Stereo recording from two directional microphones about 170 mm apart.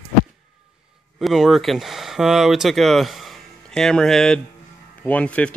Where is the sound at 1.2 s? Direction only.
Centre (ahead or behind).